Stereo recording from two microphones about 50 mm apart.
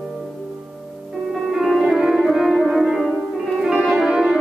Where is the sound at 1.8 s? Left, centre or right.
Centre.